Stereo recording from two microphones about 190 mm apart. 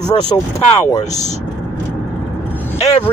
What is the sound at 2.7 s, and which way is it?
Vehicle, 35° left (ahead or behind).